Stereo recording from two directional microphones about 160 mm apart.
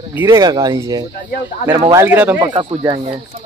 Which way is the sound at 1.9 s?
15° right (ahead or behind).